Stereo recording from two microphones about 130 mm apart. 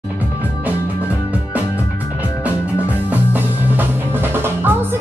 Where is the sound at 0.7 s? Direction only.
10° right (ahead or behind).